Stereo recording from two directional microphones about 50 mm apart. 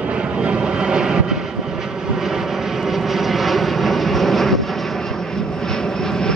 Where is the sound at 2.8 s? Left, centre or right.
Centre.